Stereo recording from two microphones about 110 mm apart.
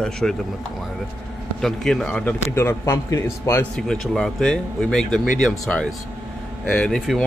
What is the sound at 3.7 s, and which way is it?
Speech, 5° left (ahead or behind).